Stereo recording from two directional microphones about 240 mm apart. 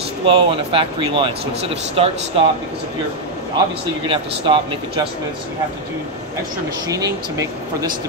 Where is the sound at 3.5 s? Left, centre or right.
Right.